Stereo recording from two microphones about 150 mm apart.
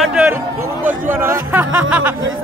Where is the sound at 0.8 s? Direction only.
15° right (ahead or behind).